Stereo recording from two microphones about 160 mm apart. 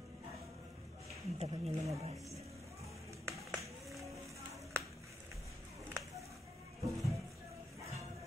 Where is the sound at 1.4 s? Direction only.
40° right (ahead or behind).